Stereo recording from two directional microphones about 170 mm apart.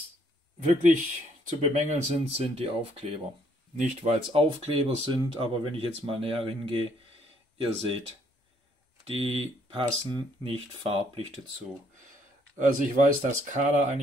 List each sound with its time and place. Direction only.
1.6 s speech: 45° right (ahead or behind)
9.0 s speech: 35° right (ahead or behind)
12.5 s speech: 50° right (ahead or behind)